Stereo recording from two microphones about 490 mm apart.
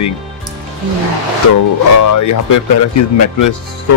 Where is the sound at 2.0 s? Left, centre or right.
Left.